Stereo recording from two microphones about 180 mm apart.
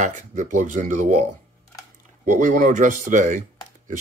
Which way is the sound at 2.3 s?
45° right (ahead or behind).